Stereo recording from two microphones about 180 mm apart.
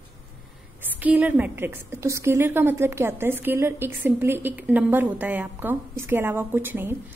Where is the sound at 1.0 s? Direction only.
10° right (ahead or behind).